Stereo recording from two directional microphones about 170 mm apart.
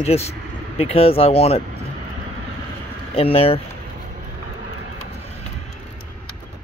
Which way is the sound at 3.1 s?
35° left (ahead or behind).